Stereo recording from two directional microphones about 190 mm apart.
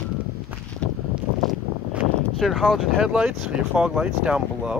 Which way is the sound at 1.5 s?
Centre (ahead or behind).